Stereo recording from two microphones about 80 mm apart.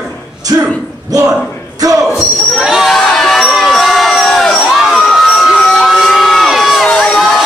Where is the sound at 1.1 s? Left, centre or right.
Right.